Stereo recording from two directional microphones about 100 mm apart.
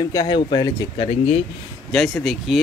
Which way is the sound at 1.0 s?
80° left.